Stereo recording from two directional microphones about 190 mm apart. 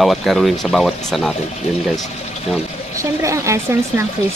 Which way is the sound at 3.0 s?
15° right (ahead or behind).